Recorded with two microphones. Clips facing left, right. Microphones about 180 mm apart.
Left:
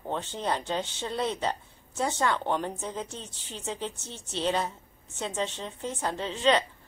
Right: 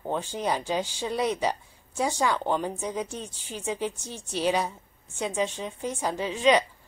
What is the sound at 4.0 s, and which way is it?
Speech, 25° left (ahead or behind).